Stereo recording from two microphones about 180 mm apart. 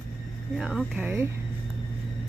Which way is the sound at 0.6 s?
5° right (ahead or behind).